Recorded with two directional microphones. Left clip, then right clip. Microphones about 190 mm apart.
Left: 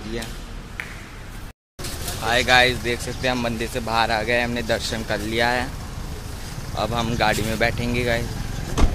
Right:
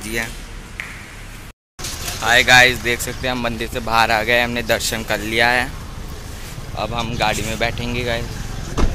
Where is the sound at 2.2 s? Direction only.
5° left (ahead or behind).